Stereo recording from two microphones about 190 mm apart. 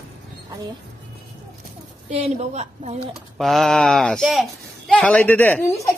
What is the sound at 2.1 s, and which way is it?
Speech, 35° right (ahead or behind).